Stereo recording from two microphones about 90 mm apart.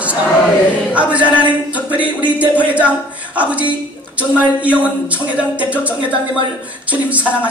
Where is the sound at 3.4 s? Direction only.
15° right (ahead or behind).